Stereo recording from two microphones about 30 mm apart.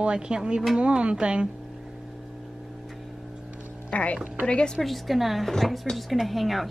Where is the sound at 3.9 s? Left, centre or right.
Left.